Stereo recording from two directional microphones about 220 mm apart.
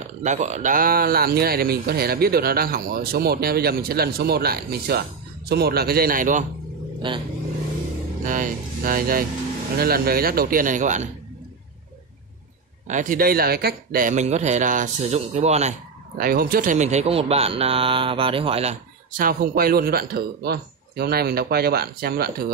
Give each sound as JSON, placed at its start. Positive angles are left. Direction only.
{"t": 0.2, "sound": "speech", "side_deg": -35}
{"t": 7.0, "sound": "speech", "side_deg": -20}
{"t": 8.2, "sound": "speech", "side_deg": -35}
{"t": 12.8, "sound": "speech", "side_deg": -35}
{"t": 16.2, "sound": "speech", "side_deg": -40}